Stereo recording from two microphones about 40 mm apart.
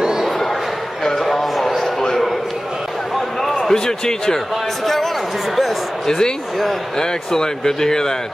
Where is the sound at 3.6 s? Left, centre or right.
Centre.